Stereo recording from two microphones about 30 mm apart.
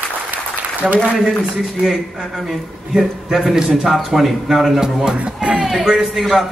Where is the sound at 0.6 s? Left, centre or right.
Right.